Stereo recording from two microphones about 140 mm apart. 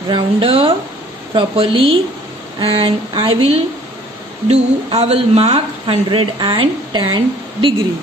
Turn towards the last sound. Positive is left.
turn(degrees=-35)  # may be behind; listen again after turning